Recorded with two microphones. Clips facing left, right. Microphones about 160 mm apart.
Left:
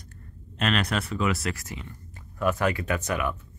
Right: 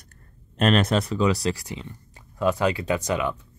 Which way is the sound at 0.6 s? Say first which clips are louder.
Right 6 dB; 40° right (ahead or behind).